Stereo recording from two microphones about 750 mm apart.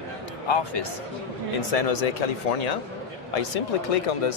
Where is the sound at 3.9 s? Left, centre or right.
Left.